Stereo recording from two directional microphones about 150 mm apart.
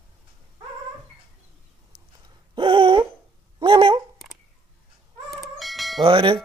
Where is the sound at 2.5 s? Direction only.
35° right (ahead or behind).